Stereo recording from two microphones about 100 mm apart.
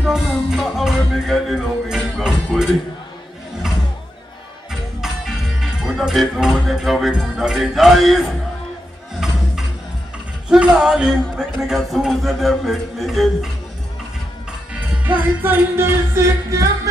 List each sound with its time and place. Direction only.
0.1 s music: centre (ahead or behind)
5.0 s music: 5° right (ahead or behind)
10.5 s a man's voice: 5° right (ahead or behind)
14.7 s music: 15° right (ahead or behind)